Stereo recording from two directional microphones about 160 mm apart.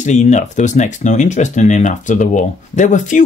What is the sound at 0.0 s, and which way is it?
Speech, 45° left (ahead or behind).